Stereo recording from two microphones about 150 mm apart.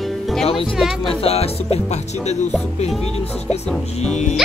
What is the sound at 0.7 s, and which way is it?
Speech, centre (ahead or behind).